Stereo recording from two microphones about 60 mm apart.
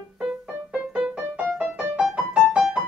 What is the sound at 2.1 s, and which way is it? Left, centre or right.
Music, centre.